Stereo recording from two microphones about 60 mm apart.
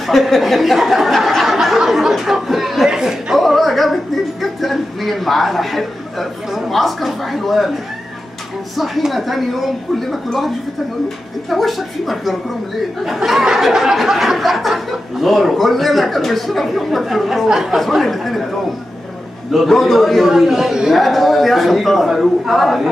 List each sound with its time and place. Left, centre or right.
0.0 s speech: centre
3.3 s music: centre
8.7 s speech: centre
19.5 s speech: centre